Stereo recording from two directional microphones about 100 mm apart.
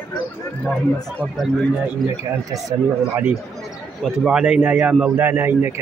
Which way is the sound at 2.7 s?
30° right (ahead or behind).